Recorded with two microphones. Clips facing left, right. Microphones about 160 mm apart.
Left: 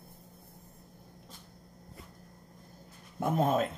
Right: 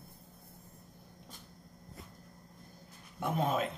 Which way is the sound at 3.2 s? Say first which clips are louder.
Left 4 dB; 45° left (ahead or behind).